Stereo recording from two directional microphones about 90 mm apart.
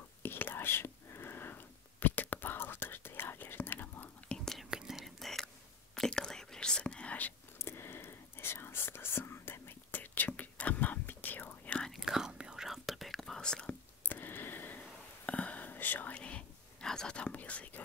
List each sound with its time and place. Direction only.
0.2 s whispering: 20° left (ahead or behind)
4.5 s whispering: 5° right (ahead or behind); by 7.3 s 15° left (ahead or behind)
7.5 s whispering: 25° left (ahead or behind)
11.9 s whispering: 5° right (ahead or behind)
14.0 s a sound: 20° left (ahead or behind)
15.2 s whispering: 15° left (ahead or behind)